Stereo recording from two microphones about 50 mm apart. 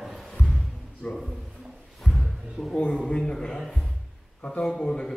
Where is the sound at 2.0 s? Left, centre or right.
Centre.